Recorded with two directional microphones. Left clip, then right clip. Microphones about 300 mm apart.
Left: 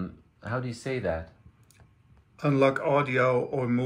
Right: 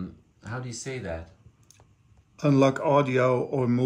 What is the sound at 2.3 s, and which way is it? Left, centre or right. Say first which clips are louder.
Speech: right 1 dB; right.